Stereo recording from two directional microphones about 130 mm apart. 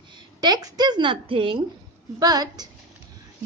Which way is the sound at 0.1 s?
30° right (ahead or behind).